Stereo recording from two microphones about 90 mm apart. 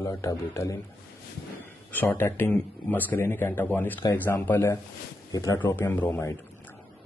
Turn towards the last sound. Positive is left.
turn(degrees=30)  # may be behind; listen again after turning